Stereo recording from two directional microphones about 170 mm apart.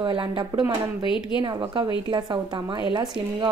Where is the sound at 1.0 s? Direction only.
30° left (ahead or behind).